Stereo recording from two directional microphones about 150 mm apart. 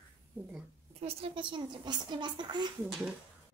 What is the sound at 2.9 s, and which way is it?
Speech, 5° right (ahead or behind).